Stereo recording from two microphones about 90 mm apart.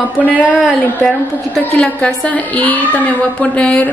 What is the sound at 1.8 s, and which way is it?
A woman's voice, 10° left (ahead or behind).